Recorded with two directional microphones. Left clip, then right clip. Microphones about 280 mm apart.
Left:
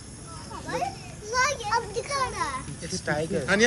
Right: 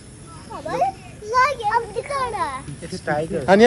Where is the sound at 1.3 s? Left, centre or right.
Centre.